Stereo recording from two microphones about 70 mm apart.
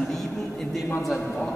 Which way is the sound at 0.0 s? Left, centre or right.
Centre.